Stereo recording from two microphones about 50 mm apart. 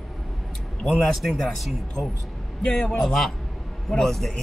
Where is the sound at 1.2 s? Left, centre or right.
Centre.